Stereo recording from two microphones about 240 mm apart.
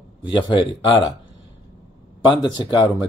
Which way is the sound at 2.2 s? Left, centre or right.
Centre.